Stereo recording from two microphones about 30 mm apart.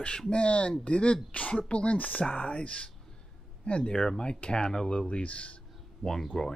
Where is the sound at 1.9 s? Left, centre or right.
Left.